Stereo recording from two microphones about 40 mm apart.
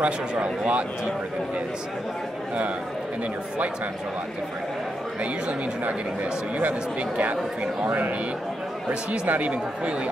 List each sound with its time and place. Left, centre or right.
0.0 s speech: right
6.6 s speech: right
9.3 s speech: right